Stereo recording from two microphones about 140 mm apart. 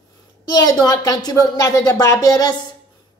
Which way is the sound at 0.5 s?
25° left (ahead or behind).